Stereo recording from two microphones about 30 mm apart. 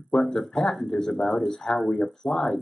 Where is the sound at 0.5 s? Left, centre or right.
Left.